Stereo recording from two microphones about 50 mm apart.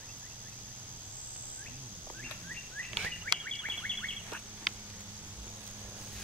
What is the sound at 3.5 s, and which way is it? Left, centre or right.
Music, left.